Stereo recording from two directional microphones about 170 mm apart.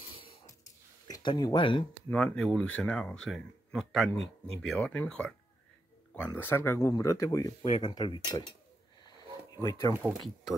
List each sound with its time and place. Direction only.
1.0 s speech: 25° left (ahead or behind)
2.0 s speech: 5° left (ahead or behind)
7.6 s speech: 35° left (ahead or behind)
7.9 s speech: 25° left (ahead or behind)
9.6 s speech: 20° left (ahead or behind)